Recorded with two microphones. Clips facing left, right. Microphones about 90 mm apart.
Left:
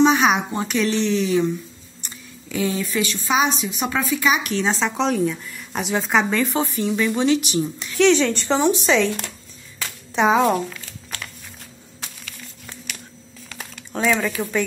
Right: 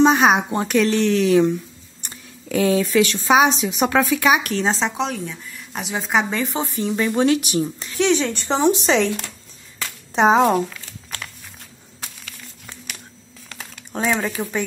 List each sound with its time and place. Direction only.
0.0 s speech: 40° right (ahead or behind)
5.1 s speech: 5° left (ahead or behind)
6.3 s speech: 20° right (ahead or behind)
7.2 s speech: 45° right (ahead or behind)
8.0 s speech: 10° right (ahead or behind)
8.5 s speech: 30° right (ahead or behind)
10.1 s a child's voice: 35° right (ahead or behind)
13.9 s speech: 25° right (ahead or behind)